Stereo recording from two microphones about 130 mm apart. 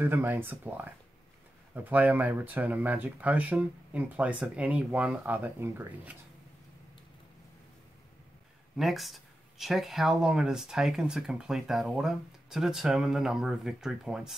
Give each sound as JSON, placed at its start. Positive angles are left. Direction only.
{"t": 0.0, "sound": "speech", "side_deg": -15}
{"t": 8.7, "sound": "speech", "side_deg": 0}